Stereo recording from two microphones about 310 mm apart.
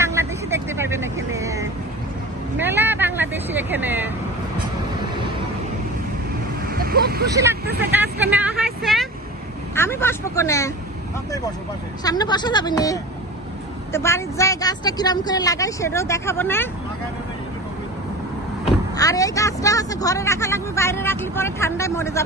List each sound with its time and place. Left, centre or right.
0.0 s vehicle: centre
6.7 s vehicle: right
7.2 s speech: centre
7.6 s speech: right
8.3 s vehicle: centre
12.0 s speech: centre
18.9 s speech: centre